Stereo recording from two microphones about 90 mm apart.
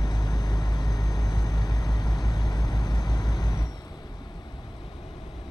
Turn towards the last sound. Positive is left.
turn(degrees=45)  # may be behind; listen again after turning